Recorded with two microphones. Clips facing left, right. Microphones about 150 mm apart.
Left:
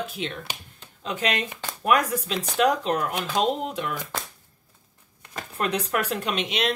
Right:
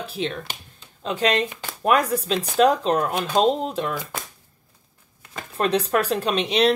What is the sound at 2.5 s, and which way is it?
A woman's voice, 35° right (ahead or behind).